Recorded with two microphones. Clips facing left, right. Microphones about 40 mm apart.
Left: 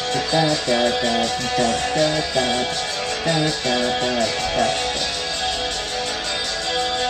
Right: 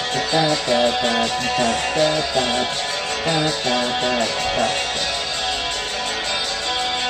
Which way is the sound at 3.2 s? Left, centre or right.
Right.